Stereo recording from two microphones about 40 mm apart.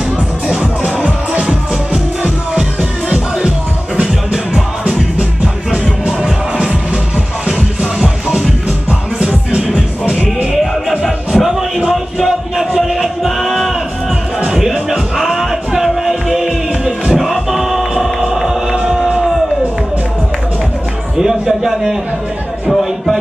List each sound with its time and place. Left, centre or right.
0.5 s music: centre
6.0 s music: centre
10.9 s music: centre
18.2 s hum: centre
21.2 s music: centre